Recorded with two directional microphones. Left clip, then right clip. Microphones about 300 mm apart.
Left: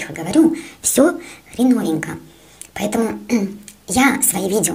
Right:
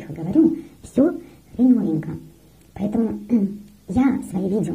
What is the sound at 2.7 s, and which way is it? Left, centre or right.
Speech, centre.